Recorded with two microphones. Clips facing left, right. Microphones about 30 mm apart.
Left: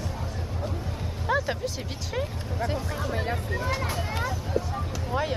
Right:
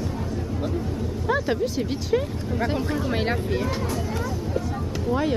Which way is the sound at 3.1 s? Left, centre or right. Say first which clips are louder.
Right 3 dB; right.